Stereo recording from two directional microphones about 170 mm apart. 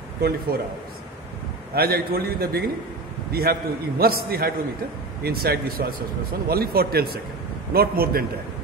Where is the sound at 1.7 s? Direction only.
65° right (ahead or behind).